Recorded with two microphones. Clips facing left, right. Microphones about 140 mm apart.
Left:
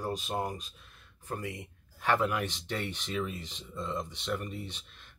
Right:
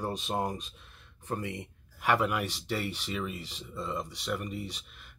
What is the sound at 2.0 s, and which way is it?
Speech, 10° right (ahead or behind).